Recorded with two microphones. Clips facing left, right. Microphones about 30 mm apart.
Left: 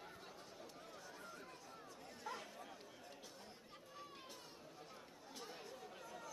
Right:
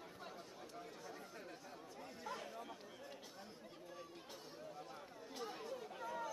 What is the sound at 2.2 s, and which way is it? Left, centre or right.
Chatter, centre.